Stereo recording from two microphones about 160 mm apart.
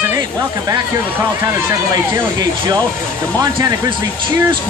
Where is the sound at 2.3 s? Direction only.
25° right (ahead or behind).